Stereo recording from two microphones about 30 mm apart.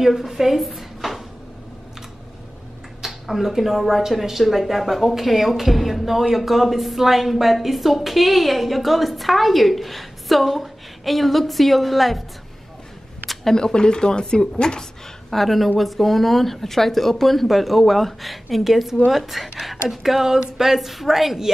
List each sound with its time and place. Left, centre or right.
0.0 s speech: centre
3.1 s speech: centre
13.3 s a sound: centre
13.6 s a woman's voice: left
15.3 s a woman's voice: centre